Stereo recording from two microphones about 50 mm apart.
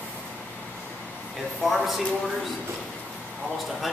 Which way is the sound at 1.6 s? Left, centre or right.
Centre.